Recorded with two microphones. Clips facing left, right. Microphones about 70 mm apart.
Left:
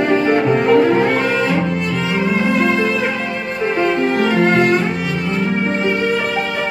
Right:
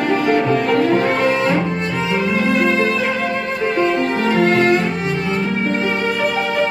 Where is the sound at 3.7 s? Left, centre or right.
Left.